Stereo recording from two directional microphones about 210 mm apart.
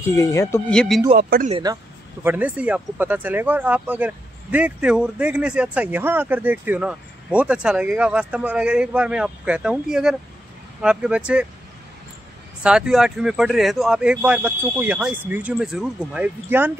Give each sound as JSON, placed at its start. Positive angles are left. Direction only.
{"t": 0.0, "sound": "speech", "side_deg": 15}
{"t": 0.7, "sound": "speech", "side_deg": 0}
{"t": 1.5, "sound": "speech", "side_deg": -20}
{"t": 2.2, "sound": "speech", "side_deg": -5}
{"t": 12.6, "sound": "speech", "side_deg": -5}